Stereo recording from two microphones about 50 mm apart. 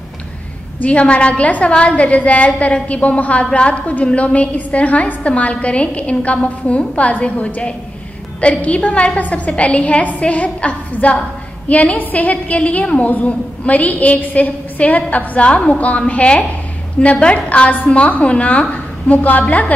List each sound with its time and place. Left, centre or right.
0.7 s a woman's voice: left
19.4 s a woman's voice: left